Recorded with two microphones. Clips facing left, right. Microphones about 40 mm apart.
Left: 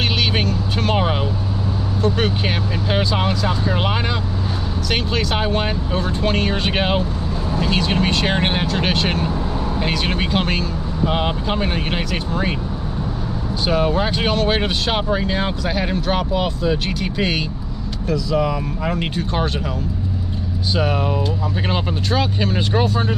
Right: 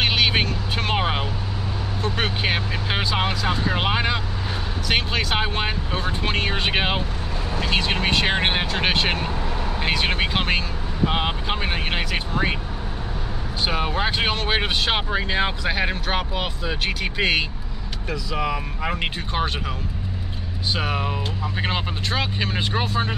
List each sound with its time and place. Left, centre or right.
0.0 s vehicle: centre
0.9 s speech: centre
13.7 s speech: centre
20.7 s speech: centre